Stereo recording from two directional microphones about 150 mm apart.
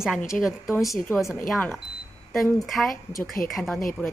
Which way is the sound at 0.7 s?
20° left (ahead or behind).